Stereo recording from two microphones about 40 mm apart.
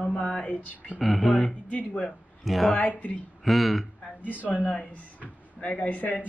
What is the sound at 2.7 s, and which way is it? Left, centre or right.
Speech, left.